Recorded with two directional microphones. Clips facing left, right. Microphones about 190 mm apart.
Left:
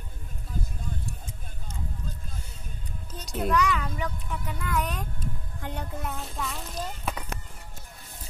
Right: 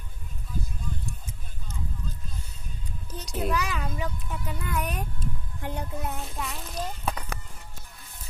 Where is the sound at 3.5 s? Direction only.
25° right (ahead or behind).